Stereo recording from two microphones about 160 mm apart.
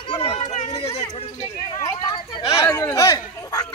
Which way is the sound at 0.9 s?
25° left (ahead or behind).